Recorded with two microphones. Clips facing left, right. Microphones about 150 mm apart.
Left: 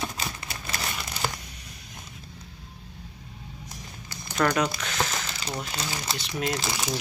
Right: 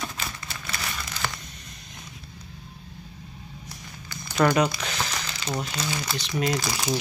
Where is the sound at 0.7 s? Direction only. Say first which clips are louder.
Left 1 dB; 30° left (ahead or behind).